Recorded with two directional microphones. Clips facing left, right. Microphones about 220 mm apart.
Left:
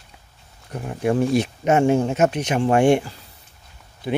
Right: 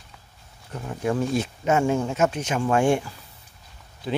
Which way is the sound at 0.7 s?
15° left (ahead or behind).